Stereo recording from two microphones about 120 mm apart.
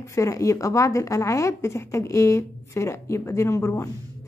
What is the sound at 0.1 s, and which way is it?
A woman's voice, 25° left (ahead or behind).